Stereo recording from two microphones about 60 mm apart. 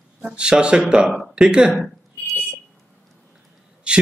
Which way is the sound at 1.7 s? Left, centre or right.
Centre.